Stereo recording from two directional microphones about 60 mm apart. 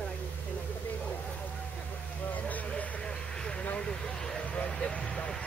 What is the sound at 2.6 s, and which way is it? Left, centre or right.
Speech, centre.